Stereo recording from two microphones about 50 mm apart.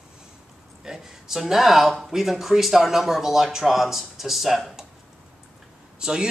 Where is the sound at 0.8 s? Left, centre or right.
Centre.